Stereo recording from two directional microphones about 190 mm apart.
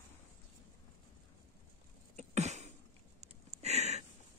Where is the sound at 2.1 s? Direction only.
35° right (ahead or behind).